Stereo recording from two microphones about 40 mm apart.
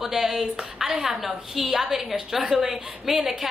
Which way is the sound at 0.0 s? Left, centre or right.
Centre.